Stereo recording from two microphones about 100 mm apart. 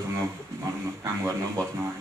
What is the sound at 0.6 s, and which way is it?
A man's voice, 30° right (ahead or behind).